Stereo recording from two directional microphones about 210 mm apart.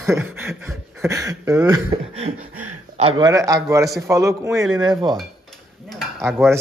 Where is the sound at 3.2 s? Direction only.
15° right (ahead or behind).